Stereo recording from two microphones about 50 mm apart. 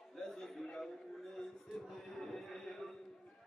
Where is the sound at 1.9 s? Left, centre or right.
Centre.